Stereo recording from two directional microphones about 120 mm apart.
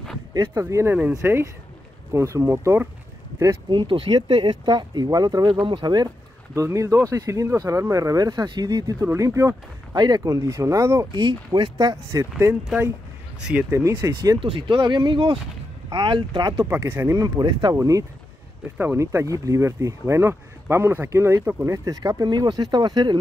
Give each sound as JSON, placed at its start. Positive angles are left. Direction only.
{"t": 0.3, "sound": "speech", "side_deg": -25}
{"t": 3.7, "sound": "speech", "side_deg": -45}
{"t": 6.5, "sound": "speech", "side_deg": -25}
{"t": 11.1, "sound": "speech", "side_deg": -40}
{"t": 13.4, "sound": "speech", "side_deg": -5}
{"t": 13.7, "sound": "speech", "side_deg": -25}
{"t": 14.4, "sound": "speech", "side_deg": -45}
{"t": 16.6, "sound": "speech", "side_deg": -20}
{"t": 17.2, "sound": "speech", "side_deg": -35}
{"t": 17.7, "sound": "speech", "side_deg": -25}